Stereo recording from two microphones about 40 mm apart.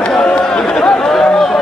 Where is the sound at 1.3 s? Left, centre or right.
Centre.